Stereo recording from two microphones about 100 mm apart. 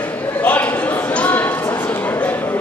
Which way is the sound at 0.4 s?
15° left (ahead or behind).